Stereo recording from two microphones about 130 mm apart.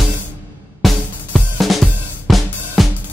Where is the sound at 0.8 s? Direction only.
Centre (ahead or behind).